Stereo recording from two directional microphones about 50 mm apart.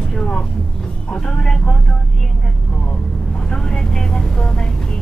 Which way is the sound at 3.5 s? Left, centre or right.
Centre.